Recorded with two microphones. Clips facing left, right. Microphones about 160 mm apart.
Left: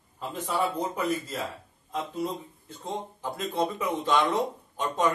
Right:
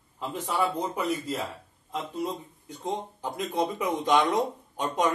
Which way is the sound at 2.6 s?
15° right (ahead or behind).